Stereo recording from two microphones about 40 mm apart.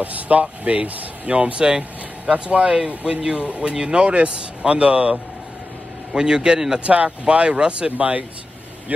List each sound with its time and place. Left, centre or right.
0.0 s speech: right
6.1 s speech: right
6.8 s speech: right